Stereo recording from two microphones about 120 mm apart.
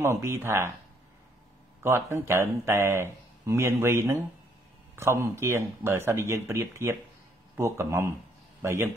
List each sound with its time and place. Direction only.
0.0 s speech: 20° right (ahead or behind)
1.8 s speech: 20° right (ahead or behind)